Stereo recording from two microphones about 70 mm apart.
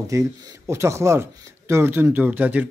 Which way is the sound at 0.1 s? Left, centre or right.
Right.